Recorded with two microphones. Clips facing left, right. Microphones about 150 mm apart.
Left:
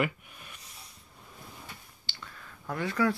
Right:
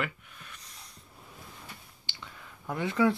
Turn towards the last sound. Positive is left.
turn(degrees=-20)  # may be behind; listen again after turning